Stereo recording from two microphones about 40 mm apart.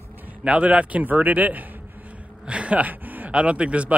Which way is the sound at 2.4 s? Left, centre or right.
Right.